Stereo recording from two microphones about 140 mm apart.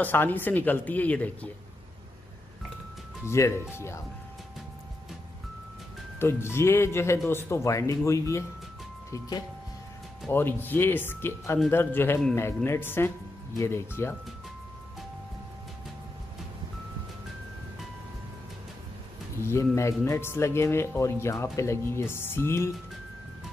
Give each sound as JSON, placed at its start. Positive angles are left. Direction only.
{"t": 0.0, "sound": "speech", "side_deg": 15}
{"t": 3.3, "sound": "speech", "side_deg": 20}
{"t": 6.1, "sound": "speech", "side_deg": 15}
{"t": 10.3, "sound": "speech", "side_deg": 15}
{"t": 19.4, "sound": "speech", "side_deg": 20}